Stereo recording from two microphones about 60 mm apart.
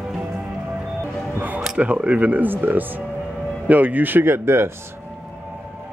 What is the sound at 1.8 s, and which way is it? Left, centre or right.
Speech, right.